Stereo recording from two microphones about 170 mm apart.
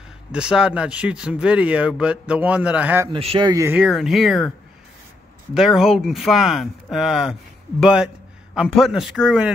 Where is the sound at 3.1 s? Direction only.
30° right (ahead or behind).